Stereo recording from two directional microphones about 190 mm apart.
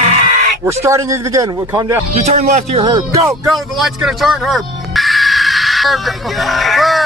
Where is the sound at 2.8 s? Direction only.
25° right (ahead or behind).